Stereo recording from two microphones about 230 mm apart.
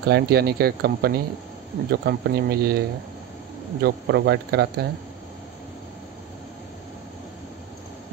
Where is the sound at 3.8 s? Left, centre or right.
Right.